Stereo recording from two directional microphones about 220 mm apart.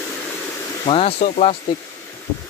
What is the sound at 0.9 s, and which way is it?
Speech, 30° left (ahead or behind).